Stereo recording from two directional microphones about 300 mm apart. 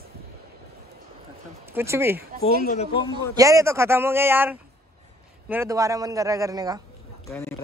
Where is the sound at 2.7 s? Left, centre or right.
Left.